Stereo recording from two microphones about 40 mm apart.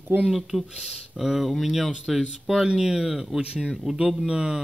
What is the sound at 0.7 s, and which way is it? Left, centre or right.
Speech, centre.